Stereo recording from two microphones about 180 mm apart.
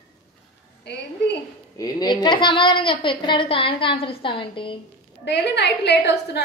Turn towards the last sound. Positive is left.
turn(degrees=70)  # may be behind; listen again after turning